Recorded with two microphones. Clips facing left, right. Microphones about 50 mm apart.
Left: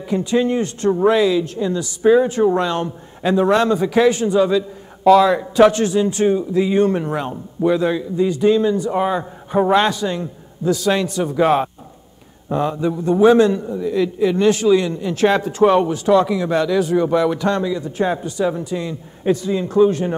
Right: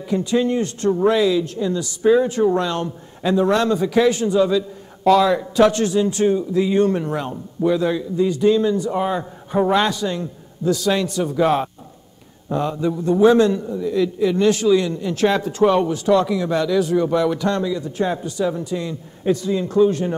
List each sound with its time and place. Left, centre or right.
0.1 s a man's voice: left
13.7 s speech: left